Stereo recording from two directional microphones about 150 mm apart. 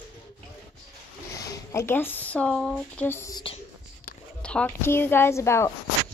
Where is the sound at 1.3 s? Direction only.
25° left (ahead or behind); by 3.1 s 5° left (ahead or behind).